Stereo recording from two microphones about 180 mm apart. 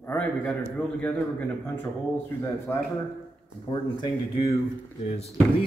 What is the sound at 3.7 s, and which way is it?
Speech, 25° left (ahead or behind).